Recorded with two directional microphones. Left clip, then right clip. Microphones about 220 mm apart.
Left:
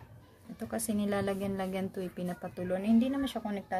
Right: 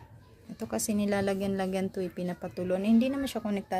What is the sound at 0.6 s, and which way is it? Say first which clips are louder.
A woman's voice: right 3 dB; 25° right (ahead or behind).